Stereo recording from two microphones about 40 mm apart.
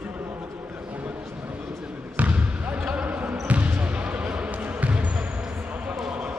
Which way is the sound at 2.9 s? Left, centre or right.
Right.